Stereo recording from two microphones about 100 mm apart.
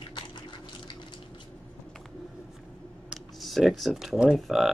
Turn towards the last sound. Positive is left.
turn(degrees=0)  # may be behind; listen again after turning